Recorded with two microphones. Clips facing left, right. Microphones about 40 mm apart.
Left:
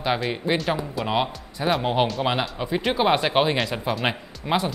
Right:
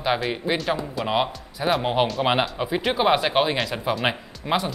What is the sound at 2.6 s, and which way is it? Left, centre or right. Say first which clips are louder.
Speech: left 1 dB; centre.